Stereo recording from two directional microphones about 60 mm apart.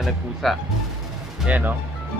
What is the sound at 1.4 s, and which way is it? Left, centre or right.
Speech, right.